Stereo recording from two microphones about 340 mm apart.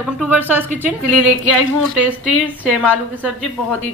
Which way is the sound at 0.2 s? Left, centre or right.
Centre.